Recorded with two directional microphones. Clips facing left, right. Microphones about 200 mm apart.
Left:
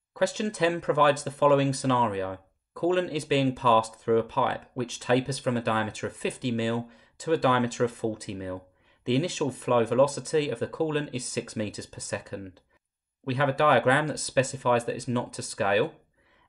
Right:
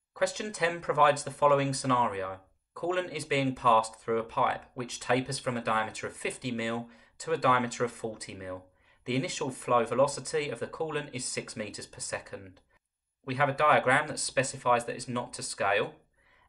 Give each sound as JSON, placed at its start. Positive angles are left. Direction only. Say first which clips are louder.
{"t": 0.2, "sound": "speech", "louder": "left 5 dB", "side_deg": 25}